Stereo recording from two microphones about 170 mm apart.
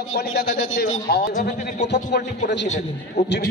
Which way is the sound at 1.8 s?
75° left (ahead or behind).